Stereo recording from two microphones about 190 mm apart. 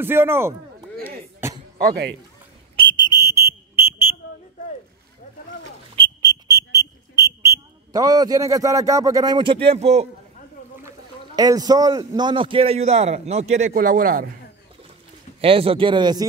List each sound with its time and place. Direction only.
0.0 s a man's voice: 10° right (ahead or behind)
1.4 s a sound: 10° right (ahead or behind)
1.8 s speech: 60° right (ahead or behind)
2.7 s whistle: 25° right (ahead or behind)
3.3 s fire alarm: 15° right (ahead or behind)
6.2 s a sound: 20° right (ahead or behind); by 10.0 s 35° right (ahead or behind)
10.8 s a man's voice: 15° right (ahead or behind); by 14.2 s 45° right (ahead or behind)
15.4 s speech: 30° right (ahead or behind)